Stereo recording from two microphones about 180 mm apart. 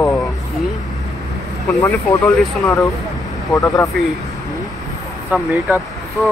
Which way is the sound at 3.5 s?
20° left (ahead or behind).